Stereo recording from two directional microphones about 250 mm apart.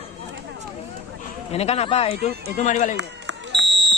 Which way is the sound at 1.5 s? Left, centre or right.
Left.